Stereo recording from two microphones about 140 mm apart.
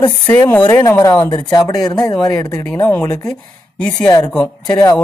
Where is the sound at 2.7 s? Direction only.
15° left (ahead or behind).